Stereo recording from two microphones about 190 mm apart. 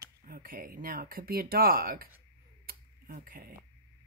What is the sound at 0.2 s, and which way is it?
Speech, 50° right (ahead or behind).